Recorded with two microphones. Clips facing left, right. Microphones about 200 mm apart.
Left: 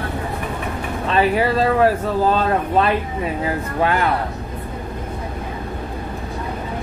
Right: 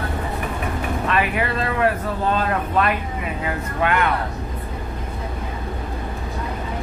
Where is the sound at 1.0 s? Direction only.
30° left (ahead or behind).